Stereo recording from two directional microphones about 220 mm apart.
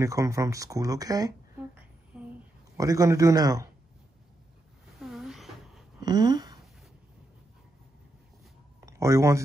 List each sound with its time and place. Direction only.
0.0 s speech: 15° right (ahead or behind)
2.1 s a sound: 5° right (ahead or behind)
2.8 s speech: 15° right (ahead or behind)
5.1 s a sound: centre (ahead or behind)
6.0 s speech: 20° right (ahead or behind)
8.8 s speech: 15° right (ahead or behind)